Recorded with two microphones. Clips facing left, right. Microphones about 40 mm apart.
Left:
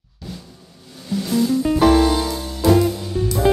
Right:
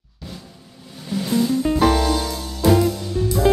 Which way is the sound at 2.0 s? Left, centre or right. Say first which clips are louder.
Left 4 dB; centre.